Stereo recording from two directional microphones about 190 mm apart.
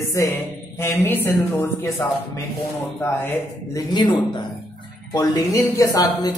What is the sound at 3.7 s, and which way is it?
Speech, 25° left (ahead or behind).